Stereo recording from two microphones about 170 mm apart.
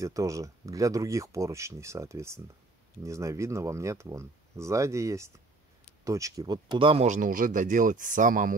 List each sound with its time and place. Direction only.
0.0 s speech: 20° right (ahead or behind)
7.1 s speech: 50° right (ahead or behind)